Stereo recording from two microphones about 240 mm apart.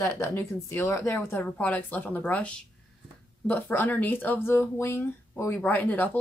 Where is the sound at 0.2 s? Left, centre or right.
Centre.